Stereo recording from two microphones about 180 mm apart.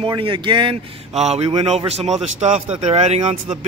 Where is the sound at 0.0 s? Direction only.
30° right (ahead or behind).